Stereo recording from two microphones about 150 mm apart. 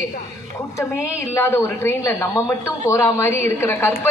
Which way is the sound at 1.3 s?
20° left (ahead or behind).